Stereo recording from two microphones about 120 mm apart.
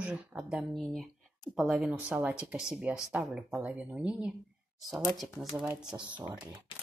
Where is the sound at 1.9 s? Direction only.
10° right (ahead or behind).